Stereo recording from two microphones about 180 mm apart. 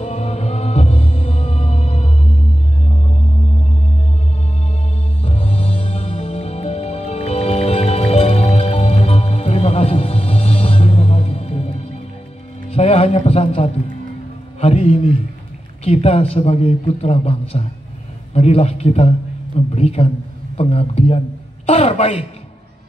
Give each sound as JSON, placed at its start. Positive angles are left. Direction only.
{"t": 0.0, "sound": "music", "side_deg": 35}
{"t": 5.2, "sound": "music", "side_deg": 35}
{"t": 12.6, "sound": "a sound", "side_deg": 35}
{"t": 15.8, "sound": "a man's voice", "side_deg": 35}